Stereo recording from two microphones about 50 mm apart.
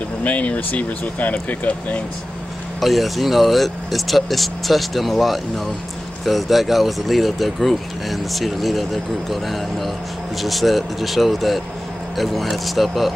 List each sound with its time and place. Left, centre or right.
0.2 s speech: left
2.8 s speech: centre